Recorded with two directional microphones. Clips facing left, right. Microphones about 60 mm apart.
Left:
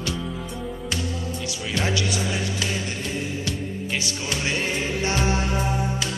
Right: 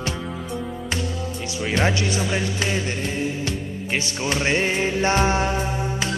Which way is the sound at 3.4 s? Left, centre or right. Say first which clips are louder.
Right 1 dB; right.